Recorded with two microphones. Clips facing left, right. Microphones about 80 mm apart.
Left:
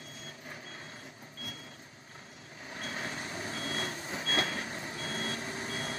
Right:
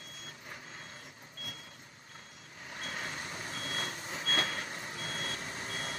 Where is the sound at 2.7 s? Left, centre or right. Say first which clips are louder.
Left 2 dB; left.